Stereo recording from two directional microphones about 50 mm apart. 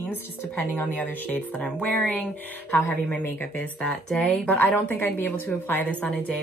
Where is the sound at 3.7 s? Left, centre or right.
Left.